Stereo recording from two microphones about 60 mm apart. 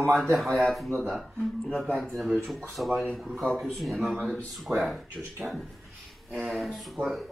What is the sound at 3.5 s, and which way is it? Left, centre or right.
Speech, centre.